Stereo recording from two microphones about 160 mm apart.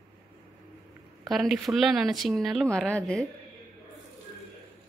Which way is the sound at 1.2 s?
Centre (ahead or behind).